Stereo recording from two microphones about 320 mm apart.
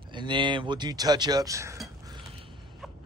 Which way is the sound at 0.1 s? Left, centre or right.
Centre.